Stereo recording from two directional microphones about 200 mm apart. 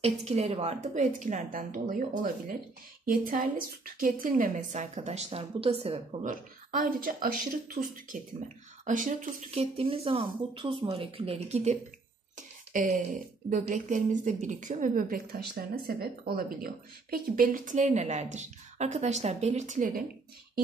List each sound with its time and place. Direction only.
0.0 s speech: 30° right (ahead or behind)
6.7 s speech: 45° right (ahead or behind)